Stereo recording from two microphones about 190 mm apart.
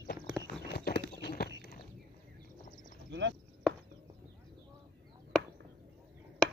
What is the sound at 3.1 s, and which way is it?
Chop, 70° right (ahead or behind).